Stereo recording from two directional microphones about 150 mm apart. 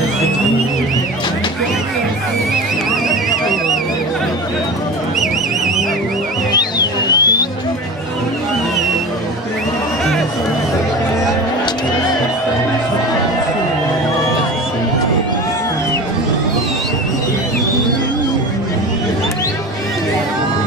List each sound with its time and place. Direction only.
6.5 s music: 25° left (ahead or behind)